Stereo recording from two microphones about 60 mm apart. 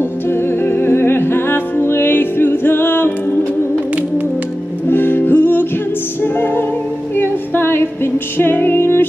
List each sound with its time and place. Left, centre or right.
0.3 s music: left
4.8 s music: left